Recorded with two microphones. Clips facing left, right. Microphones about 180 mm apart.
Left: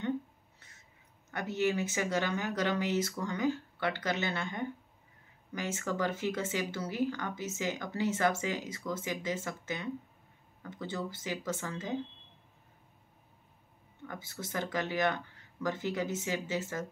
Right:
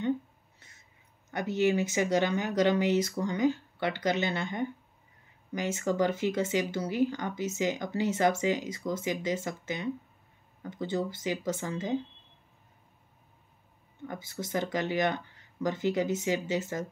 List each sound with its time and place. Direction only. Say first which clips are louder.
1.6 s speech: right 5 dB; 15° right (ahead or behind)
14.0 s speech: right 5 dB; 15° right (ahead or behind)